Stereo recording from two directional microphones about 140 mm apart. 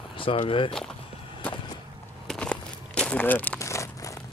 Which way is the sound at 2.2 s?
5° left (ahead or behind).